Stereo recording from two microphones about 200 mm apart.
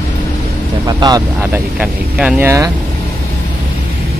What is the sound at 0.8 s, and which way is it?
Speech, 20° right (ahead or behind).